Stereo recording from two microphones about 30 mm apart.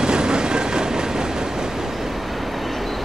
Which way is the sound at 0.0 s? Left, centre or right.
Right.